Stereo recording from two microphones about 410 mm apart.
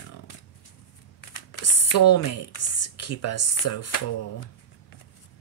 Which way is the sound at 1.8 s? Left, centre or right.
Left.